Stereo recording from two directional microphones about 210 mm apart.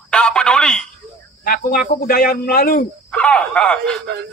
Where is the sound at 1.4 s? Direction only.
45° left (ahead or behind).